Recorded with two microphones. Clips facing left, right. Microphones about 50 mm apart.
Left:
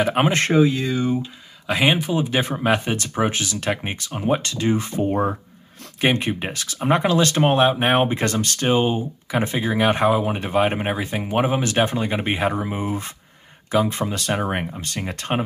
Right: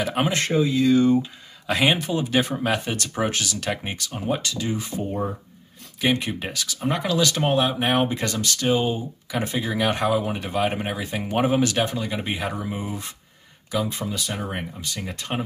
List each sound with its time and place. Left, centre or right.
0.1 s speech: left
0.8 s speech: centre; by 5.1 s left
5.1 s speech: left
5.9 s speech: left
11.1 s speech: centre
11.7 s speech: left